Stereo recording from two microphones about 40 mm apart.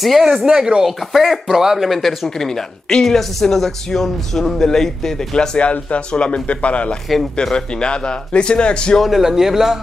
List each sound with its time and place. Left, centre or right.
0.0 s speech: centre
0.5 s speech: centre
0.8 s a man's voice: centre
5.6 s speech: left
9.0 s speech: centre